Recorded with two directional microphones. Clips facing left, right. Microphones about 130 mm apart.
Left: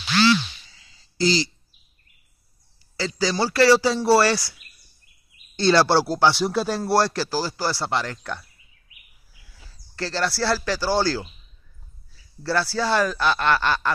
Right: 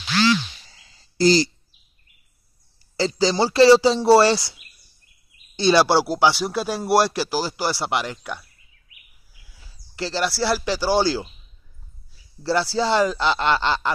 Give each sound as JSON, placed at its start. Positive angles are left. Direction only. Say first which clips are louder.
{"t": 0.7, "sound": "a sound", "louder": "right 3 dB", "side_deg": -40}
{"t": 3.0, "sound": "speech", "louder": "right 4 dB", "side_deg": -25}
{"t": 9.5, "sound": "speech", "louder": "left 1 dB", "side_deg": -10}
{"t": 12.4, "sound": "speech", "louder": "right 2 dB", "side_deg": -20}